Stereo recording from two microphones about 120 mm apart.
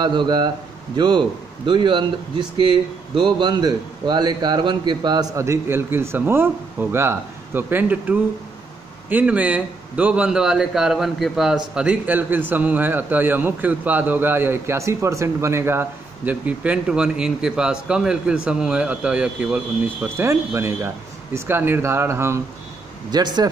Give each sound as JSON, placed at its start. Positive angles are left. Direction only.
{"t": 0.0, "sound": "a man's voice", "side_deg": -40}
{"t": 20.2, "sound": "a man's voice", "side_deg": -25}
{"t": 23.1, "sound": "a man's voice", "side_deg": -35}